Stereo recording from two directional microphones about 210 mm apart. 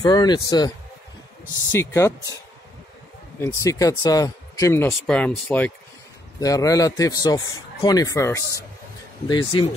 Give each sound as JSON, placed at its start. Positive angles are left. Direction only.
{"t": 0.0, "sound": "speech", "side_deg": 20}
{"t": 3.3, "sound": "speech", "side_deg": 15}